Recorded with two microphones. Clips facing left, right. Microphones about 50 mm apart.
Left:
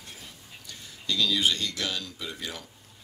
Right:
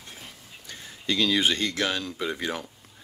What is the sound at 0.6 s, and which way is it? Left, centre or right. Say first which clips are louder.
Speech: right 4 dB; right.